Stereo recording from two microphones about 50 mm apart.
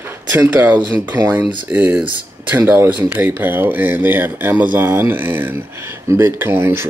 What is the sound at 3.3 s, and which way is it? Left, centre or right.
Speech, right.